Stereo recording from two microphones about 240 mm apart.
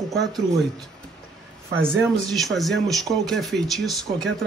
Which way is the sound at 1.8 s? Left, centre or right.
Centre.